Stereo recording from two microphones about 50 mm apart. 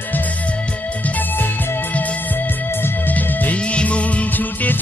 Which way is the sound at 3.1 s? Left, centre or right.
Left.